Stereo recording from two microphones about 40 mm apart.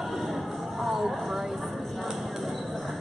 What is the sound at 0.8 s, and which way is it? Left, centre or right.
Vehicle, centre.